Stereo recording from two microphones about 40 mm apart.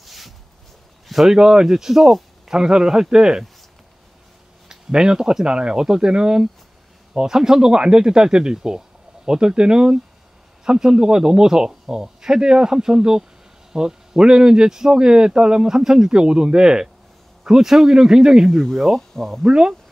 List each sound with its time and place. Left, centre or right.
0.0 s a sound: centre
1.3 s speech: centre
4.6 s a man's voice: centre
18.9 s speech: centre
19.4 s a man's voice: right